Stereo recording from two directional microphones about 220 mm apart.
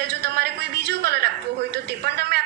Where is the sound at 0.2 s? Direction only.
50° right (ahead or behind).